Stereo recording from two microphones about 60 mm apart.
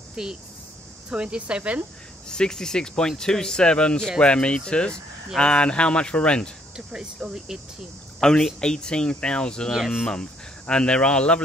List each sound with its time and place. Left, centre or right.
0.1 s speech: centre
2.2 s speech: centre
6.9 s speech: centre
8.2 s speech: centre
9.7 s speech: centre
10.7 s speech: centre